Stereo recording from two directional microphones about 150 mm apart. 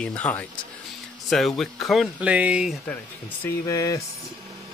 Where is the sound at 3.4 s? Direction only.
20° left (ahead or behind).